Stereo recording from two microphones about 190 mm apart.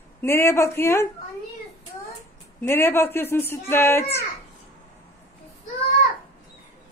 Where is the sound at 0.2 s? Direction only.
10° left (ahead or behind).